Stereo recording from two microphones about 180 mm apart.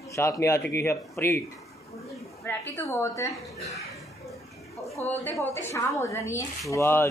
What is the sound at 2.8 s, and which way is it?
Speech, 15° left (ahead or behind).